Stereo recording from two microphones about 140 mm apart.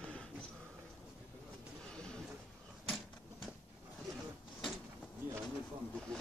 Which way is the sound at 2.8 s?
Centre (ahead or behind).